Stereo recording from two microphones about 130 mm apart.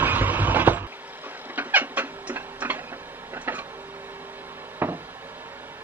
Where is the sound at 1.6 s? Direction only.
15° right (ahead or behind).